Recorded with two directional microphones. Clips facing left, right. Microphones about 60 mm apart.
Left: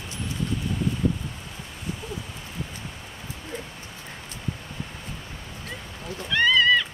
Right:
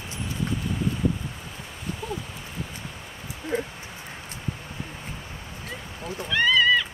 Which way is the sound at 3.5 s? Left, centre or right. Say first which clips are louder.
Right 9 dB; right.